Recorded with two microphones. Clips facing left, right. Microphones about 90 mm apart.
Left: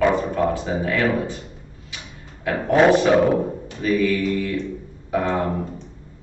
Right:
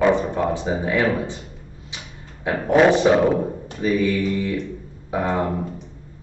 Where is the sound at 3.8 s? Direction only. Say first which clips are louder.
Even; 20° right (ahead or behind).